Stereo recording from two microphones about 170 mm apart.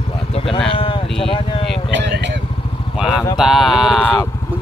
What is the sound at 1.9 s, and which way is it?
Vehicle, 90° right.